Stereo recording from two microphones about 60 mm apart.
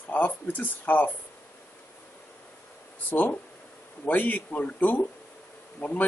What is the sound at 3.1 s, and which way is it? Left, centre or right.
Speech, left.